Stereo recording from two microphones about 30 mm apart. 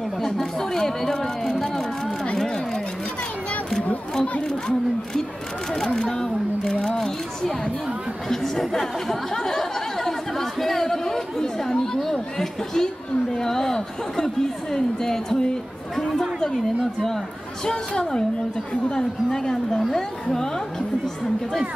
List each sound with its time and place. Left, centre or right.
0.6 s chatter: centre
4.1 s chatter: left
5.8 s speech: centre
8.3 s speech: centre
9.3 s chatter: centre
13.4 s a sound: centre
16.8 s speech: centre
17.6 s a woman's voice: left
19.4 s a woman's voice: left